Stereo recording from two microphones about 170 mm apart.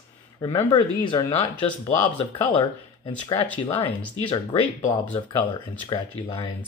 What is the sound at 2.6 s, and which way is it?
Speech, 30° left (ahead or behind).